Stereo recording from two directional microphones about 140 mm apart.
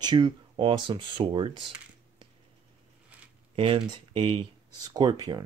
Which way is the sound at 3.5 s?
40° right (ahead or behind).